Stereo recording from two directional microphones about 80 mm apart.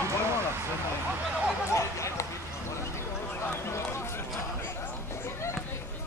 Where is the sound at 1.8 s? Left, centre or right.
Left.